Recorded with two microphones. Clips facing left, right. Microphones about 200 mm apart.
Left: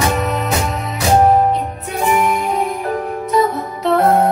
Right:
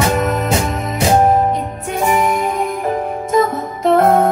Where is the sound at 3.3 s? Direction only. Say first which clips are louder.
Right 1 dB; 50° right (ahead or behind).